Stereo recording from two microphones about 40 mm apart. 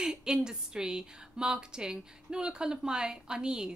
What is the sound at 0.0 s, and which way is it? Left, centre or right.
A woman's voice, centre.